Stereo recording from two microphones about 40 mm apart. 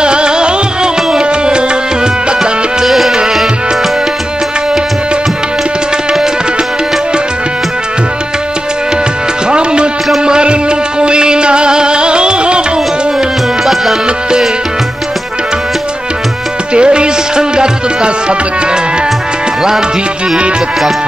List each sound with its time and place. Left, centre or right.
0.0 s music: right
2.8 s music: centre
9.5 s music: right
16.7 s music: right